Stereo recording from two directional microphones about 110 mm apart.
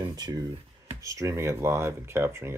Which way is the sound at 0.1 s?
35° right (ahead or behind).